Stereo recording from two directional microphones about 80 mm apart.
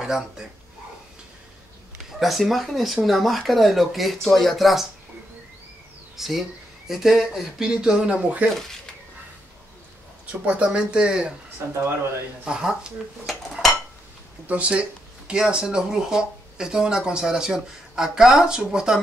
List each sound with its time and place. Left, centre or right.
0.0 s speech: centre
2.1 s speech: centre
6.1 s speech: centre
10.4 s speech: centre
12.4 s speech: centre
13.3 s dishes: centre
14.5 s speech: centre